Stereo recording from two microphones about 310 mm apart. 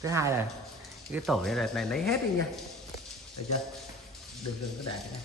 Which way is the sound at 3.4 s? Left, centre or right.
Left.